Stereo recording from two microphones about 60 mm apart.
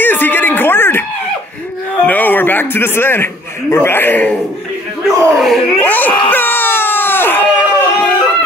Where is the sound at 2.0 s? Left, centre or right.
Left.